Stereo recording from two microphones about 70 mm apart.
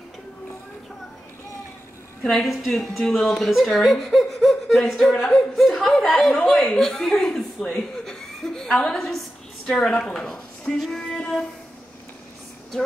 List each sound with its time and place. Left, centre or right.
2.2 s a woman's voice: centre